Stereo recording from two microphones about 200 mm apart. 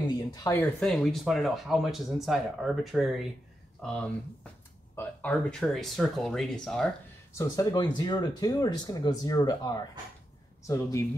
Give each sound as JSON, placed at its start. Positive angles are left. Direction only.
{"t": 0.3, "sound": "speech", "side_deg": 15}
{"t": 7.3, "sound": "speech", "side_deg": 20}